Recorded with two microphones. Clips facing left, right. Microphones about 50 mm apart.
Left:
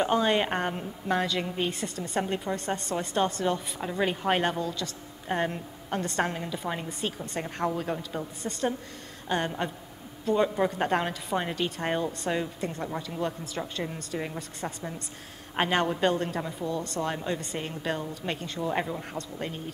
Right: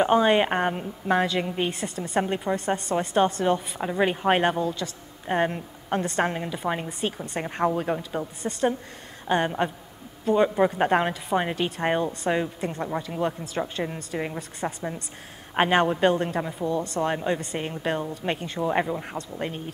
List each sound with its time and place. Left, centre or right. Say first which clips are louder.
0.0 s a woman's voice: right 5 dB; centre
8.4 s a woman's voice: right 4 dB; centre
9.3 s a woman's voice: right 5 dB; centre